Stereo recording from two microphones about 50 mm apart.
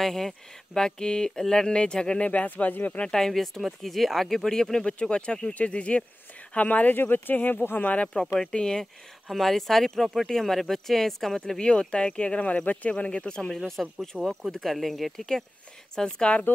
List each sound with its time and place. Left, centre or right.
0.0 s speech: centre; by 3.0 s left
3.0 s speech: centre; by 7.9 s left
7.9 s speech: left
9.3 s speech: centre
13.5 s speech: centre
15.9 s speech: centre